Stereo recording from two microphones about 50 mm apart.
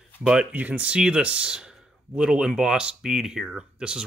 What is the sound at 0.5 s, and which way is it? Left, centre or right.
Speech, right.